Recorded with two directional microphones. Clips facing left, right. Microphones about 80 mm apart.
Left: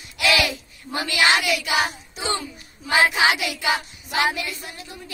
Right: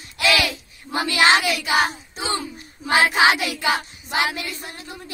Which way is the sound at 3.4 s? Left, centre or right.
Right.